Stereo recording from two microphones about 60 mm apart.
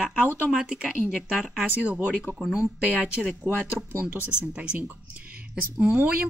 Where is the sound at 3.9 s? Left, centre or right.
Right.